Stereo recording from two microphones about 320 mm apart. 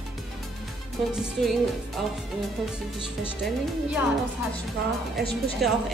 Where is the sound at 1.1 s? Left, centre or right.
Centre.